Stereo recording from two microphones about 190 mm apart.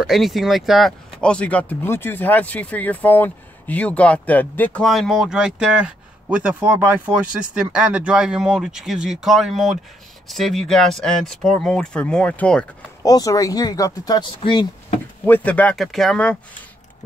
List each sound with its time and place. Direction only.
0.0 s speech: centre (ahead or behind)
13.0 s speech: 20° left (ahead or behind)
15.2 s speech: 10° left (ahead or behind)